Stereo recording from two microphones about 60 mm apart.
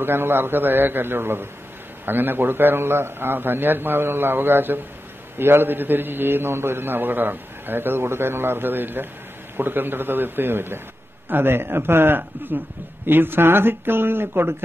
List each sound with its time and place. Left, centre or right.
0.0 s a man's voice: right